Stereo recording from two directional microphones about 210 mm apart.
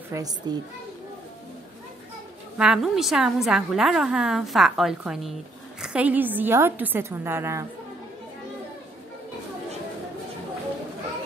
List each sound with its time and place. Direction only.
0.1 s a woman's voice: 15° right (ahead or behind)
2.5 s a woman's voice: 5° right (ahead or behind)